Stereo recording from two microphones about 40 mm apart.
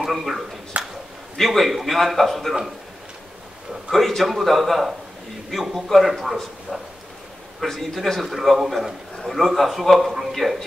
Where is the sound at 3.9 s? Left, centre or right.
Centre.